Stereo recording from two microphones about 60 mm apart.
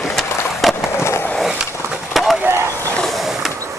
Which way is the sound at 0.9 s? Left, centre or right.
Left.